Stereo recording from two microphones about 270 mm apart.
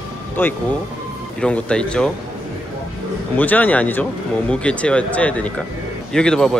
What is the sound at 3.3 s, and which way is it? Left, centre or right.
Speech, centre.